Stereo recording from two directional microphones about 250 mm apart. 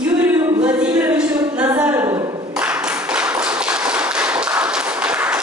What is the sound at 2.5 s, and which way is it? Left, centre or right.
Tap, centre.